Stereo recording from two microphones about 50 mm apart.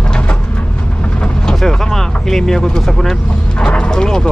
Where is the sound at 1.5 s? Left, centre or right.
Centre.